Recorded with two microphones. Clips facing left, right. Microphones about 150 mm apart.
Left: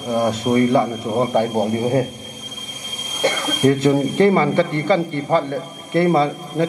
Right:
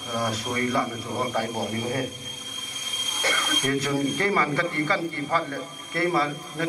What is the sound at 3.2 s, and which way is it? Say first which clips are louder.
Speech: left 11 dB; 25° left (ahead or behind).